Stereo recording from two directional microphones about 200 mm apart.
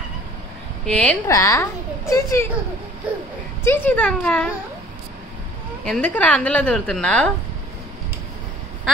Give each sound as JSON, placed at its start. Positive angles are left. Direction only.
{"t": 0.8, "sound": "a woman's voice", "side_deg": 5}
{"t": 3.6, "sound": "speech", "side_deg": 10}
{"t": 5.9, "sound": "a woman's voice", "side_deg": 5}